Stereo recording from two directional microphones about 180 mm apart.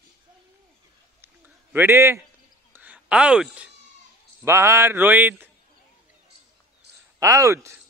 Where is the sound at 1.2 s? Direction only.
10° right (ahead or behind).